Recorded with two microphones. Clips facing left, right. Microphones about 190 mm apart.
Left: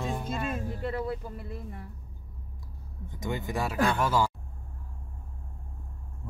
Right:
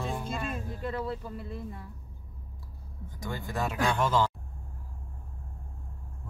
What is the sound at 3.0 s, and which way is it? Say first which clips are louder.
Speech: left 4 dB; 20° left (ahead or behind).